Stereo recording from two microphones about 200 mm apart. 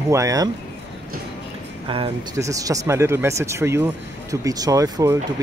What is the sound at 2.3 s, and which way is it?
Speech, 15° right (ahead or behind).